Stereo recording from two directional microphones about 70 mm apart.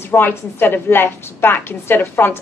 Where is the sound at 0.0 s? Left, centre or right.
Left.